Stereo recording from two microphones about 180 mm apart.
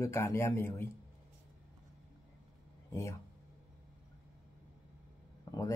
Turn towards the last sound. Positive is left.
turn(degrees=20)  # may be behind; listen again after turning